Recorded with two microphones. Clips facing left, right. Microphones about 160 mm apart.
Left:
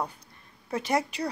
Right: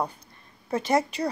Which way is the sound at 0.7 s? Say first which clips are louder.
Right 4 dB; 10° left (ahead or behind).